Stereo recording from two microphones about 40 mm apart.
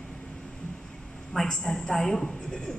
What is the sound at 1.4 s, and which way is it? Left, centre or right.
A woman's voice, centre.